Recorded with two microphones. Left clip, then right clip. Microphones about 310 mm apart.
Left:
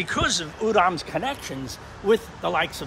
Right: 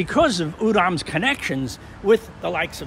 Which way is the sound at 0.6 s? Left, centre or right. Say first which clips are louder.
Right 1 dB; right.